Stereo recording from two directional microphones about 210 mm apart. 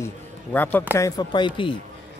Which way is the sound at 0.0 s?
10° left (ahead or behind).